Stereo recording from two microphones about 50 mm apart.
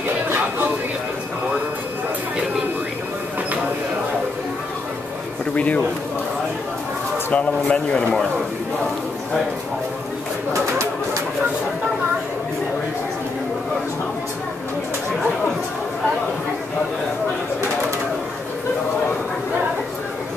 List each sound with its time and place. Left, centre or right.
5.4 s a man's voice: left
7.3 s speech: left